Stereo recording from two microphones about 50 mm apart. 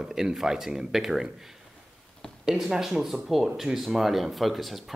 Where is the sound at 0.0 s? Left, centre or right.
Centre.